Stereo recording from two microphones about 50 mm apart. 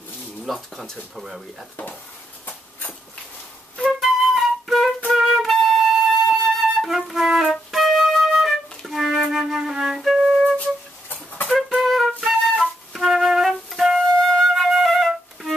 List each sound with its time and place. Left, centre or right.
0.5 s speech: centre
4.0 s flute: centre
10.6 s a sound: left
11.5 s flute: centre
14.0 s flute: centre